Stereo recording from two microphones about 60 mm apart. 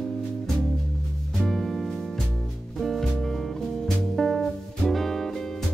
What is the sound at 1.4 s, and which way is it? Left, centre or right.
Music, centre.